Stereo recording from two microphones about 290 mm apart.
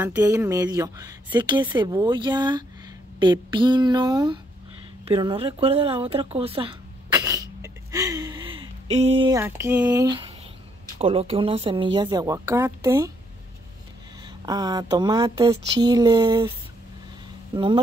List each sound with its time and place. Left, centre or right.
0.0 s speech: centre
7.2 s a sound: centre
11.0 s speech: centre
14.4 s speech: centre
17.6 s speech: centre